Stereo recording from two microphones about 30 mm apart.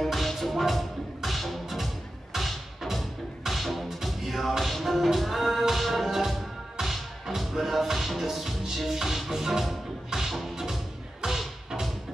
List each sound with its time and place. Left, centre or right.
0.0 s music: centre